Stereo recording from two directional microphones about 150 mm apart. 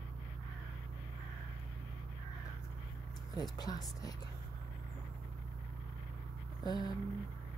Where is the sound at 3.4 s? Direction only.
25° left (ahead or behind).